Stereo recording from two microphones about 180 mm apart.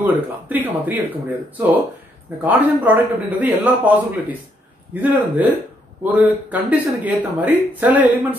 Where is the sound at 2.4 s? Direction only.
10° right (ahead or behind).